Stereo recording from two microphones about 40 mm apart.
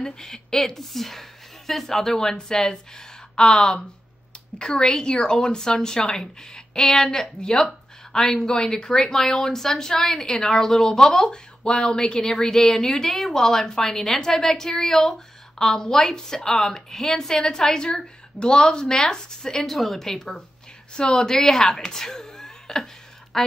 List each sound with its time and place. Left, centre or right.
0.0 s a woman's voice: centre
12.2 s a woman's voice: centre
19.6 s a woman's voice: centre; by 21.2 s left
21.2 s a woman's voice: centre